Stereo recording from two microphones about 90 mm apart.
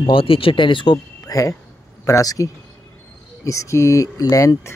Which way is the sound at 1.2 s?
40° left (ahead or behind).